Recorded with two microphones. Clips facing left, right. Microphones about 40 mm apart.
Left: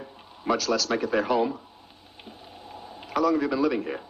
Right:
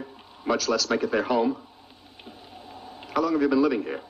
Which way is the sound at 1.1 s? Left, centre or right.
Centre.